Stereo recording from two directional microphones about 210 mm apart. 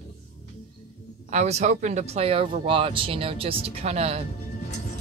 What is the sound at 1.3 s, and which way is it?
Speech, 30° right (ahead or behind).